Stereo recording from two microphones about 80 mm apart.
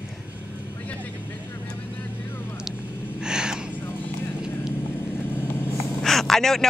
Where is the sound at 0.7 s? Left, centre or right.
Centre.